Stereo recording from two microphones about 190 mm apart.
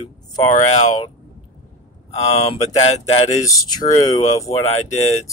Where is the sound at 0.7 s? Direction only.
35° left (ahead or behind).